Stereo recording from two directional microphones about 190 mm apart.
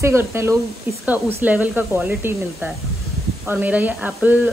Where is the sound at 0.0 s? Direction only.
15° right (ahead or behind).